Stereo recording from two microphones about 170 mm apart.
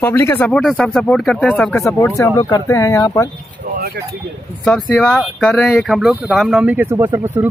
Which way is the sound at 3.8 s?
65° right (ahead or behind).